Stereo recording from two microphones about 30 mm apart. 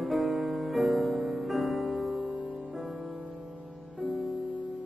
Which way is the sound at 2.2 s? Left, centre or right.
Right.